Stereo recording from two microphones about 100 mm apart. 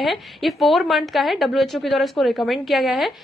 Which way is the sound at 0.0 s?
Centre (ahead or behind).